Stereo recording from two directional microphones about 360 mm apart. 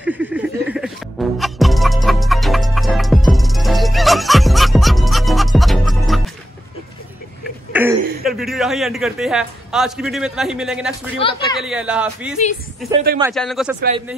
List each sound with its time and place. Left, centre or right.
0.0 s music: centre
7.7 s speech: centre
11.2 s speech: centre
11.5 s speech: centre